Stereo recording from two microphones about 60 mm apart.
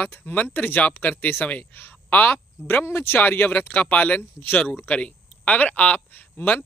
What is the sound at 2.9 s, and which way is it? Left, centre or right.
Speech, left.